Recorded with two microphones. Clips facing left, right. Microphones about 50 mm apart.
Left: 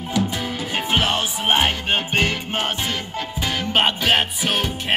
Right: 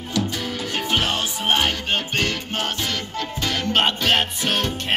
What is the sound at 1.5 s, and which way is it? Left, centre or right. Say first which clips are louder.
Music: left 2 dB; centre.